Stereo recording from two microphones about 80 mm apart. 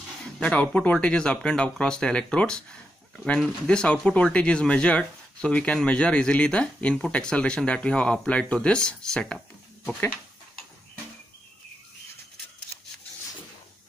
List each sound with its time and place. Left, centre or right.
0.2 s speech: centre